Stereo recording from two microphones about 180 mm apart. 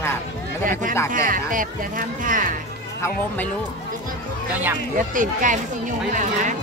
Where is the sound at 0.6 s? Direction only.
45° right (ahead or behind).